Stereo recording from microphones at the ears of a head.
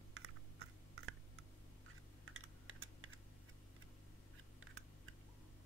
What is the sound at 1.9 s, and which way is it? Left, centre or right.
Computer keyboard, right.